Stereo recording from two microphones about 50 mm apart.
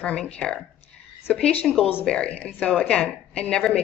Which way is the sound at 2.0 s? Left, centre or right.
Centre.